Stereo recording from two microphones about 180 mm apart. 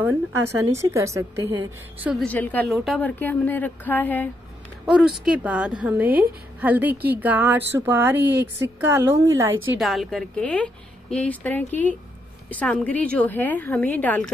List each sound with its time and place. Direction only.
0.0 s a woman's voice: 15° right (ahead or behind)
2.2 s a woman's voice: 10° left (ahead or behind)
4.8 s a woman's voice: centre (ahead or behind)
9.8 s a woman's voice: centre (ahead or behind)